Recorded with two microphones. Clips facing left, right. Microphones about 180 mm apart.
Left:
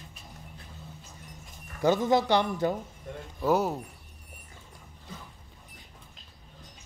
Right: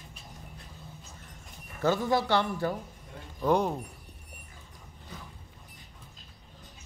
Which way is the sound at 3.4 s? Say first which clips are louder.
Even; 5° left (ahead or behind).